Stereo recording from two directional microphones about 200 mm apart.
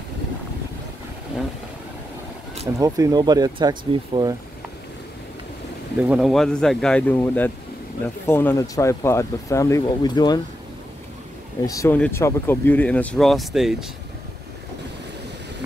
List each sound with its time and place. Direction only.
2.8 s speech: 20° right (ahead or behind)
5.9 s speech: 5° right (ahead or behind); by 10.4 s 20° left (ahead or behind)
11.6 s speech: 15° left (ahead or behind); by 13.8 s centre (ahead or behind)